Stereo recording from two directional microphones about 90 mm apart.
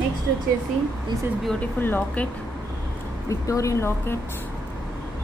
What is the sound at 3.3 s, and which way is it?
Speech, 35° left (ahead or behind).